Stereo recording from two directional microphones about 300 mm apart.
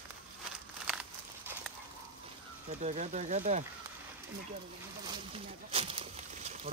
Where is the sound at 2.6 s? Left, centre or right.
Right.